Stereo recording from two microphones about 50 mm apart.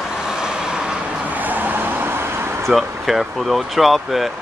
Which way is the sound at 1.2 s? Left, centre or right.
Right.